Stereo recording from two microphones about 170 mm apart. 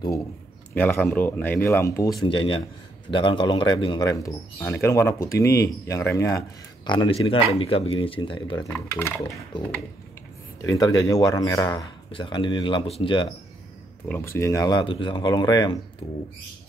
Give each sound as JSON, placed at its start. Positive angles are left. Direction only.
{"t": 0.7, "sound": "speech", "side_deg": 10}
{"t": 2.2, "sound": "speech", "side_deg": 30}
{"t": 10.6, "sound": "speech", "side_deg": 20}
{"t": 14.0, "sound": "speech", "side_deg": 15}